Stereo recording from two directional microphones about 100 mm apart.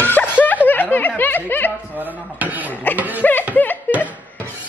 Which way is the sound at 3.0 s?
15° right (ahead or behind).